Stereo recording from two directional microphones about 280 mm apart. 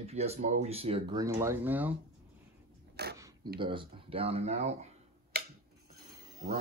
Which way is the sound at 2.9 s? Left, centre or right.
Right.